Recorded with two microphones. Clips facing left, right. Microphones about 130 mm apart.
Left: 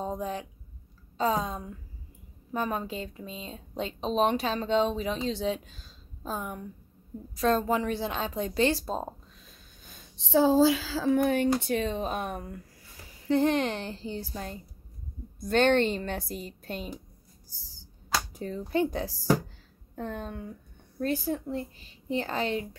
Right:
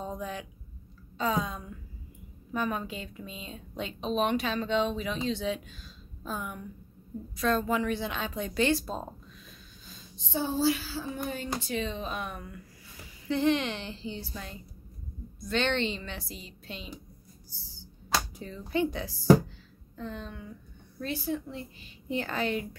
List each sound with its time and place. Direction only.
0.0 s a sound: 35° left (ahead or behind)
1.1 s a woman's voice: 35° left (ahead or behind)
9.8 s a woman's voice: 70° left (ahead or behind); by 16.9 s 50° left (ahead or behind)
17.5 s a sound: 40° left (ahead or behind)
18.3 s a woman's voice: 40° left (ahead or behind)
20.0 s a woman's voice: 50° left (ahead or behind)
22.1 s a woman's voice: 30° left (ahead or behind)